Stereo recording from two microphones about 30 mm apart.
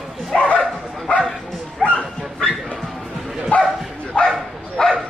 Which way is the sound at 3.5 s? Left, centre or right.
Left.